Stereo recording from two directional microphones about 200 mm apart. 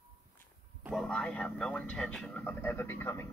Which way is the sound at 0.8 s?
Centre (ahead or behind).